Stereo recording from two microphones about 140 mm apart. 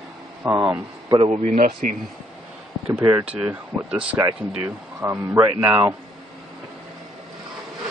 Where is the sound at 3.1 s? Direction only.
15° right (ahead or behind).